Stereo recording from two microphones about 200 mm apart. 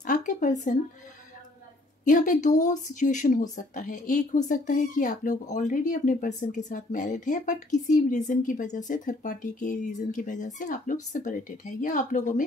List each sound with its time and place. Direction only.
0.0 s speech: 40° left (ahead or behind)
2.0 s speech: 40° left (ahead or behind)